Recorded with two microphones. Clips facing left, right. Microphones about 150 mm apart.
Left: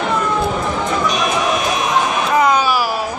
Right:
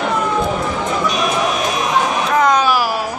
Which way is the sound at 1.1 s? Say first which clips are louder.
Even; centre (ahead or behind).